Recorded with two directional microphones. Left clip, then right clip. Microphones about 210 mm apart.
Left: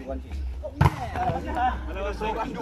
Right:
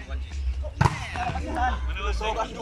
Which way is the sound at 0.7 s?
5° left (ahead or behind).